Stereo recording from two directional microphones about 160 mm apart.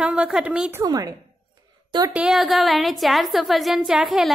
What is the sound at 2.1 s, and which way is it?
A woman's voice, 5° right (ahead or behind).